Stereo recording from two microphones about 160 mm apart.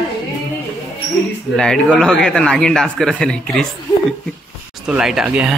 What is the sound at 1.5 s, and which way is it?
A man's voice, 5° left (ahead or behind).